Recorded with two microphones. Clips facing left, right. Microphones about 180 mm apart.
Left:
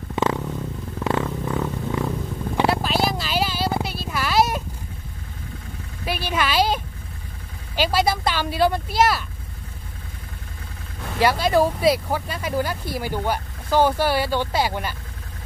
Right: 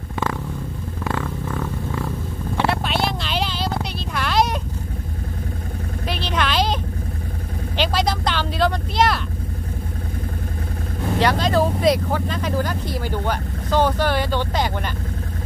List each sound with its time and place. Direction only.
0.1 s vehicle: 20° left (ahead or behind)
1.0 s purr: 20° left (ahead or behind)
2.7 s a sound: centre (ahead or behind)
6.0 s vehicle: 10° left (ahead or behind)
11.1 s speech: 10° left (ahead or behind)